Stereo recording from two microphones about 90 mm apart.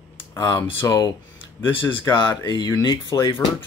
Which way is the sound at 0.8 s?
35° left (ahead or behind).